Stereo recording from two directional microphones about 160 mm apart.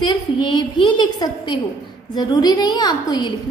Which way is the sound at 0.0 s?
30° left (ahead or behind).